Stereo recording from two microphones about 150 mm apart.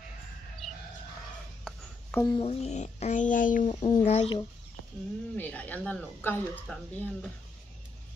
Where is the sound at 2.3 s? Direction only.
40° left (ahead or behind); by 3.7 s 60° left (ahead or behind).